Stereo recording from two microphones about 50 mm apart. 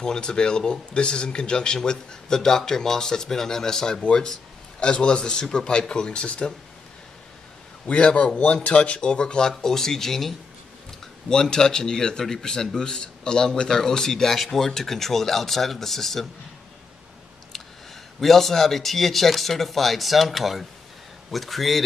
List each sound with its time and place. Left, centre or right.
0.0 s a man's voice: centre
7.8 s a man's voice: left; by 16.3 s centre
18.2 s speech: centre